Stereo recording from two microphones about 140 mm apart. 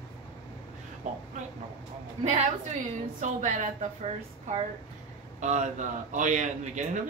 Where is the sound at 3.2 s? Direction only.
60° right (ahead or behind).